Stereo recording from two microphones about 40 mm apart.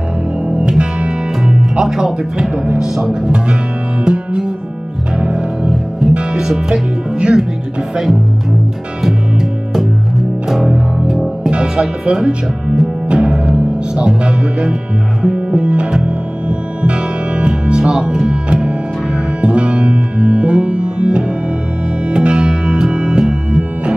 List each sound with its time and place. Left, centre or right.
0.6 s music: right
1.8 s speech: centre
2.5 s speech: right
4.0 s music: right
6.3 s speech: centre
7.9 s speech: centre
11.5 s music: right